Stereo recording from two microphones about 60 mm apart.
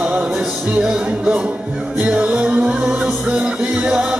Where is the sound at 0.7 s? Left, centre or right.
Centre.